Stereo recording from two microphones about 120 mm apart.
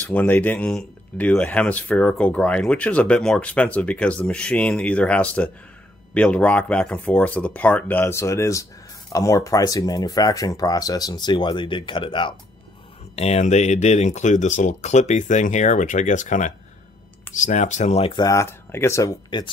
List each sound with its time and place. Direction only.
0.0 s speech: 15° left (ahead or behind); by 12.4 s 45° left (ahead or behind)
13.1 s speech: 60° left (ahead or behind)
18.2 s speech: 25° left (ahead or behind)